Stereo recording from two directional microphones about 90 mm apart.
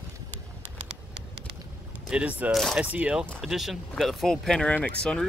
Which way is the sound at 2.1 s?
15° right (ahead or behind).